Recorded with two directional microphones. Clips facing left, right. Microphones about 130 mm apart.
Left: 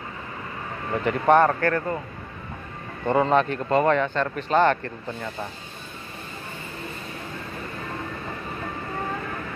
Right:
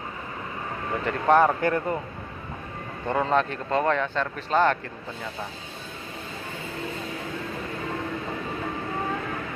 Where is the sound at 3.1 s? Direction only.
Centre (ahead or behind).